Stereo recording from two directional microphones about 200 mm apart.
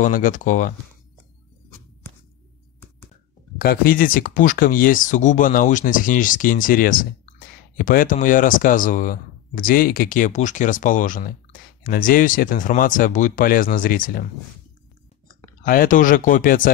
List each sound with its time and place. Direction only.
0.0 s speech: 40° left (ahead or behind)
3.5 s speech: 45° left (ahead or behind)
15.6 s speech: 45° left (ahead or behind)